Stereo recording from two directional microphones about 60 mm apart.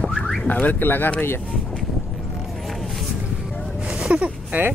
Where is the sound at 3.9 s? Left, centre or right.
Centre.